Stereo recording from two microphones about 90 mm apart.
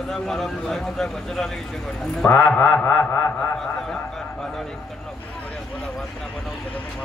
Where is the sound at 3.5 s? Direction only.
5° left (ahead or behind).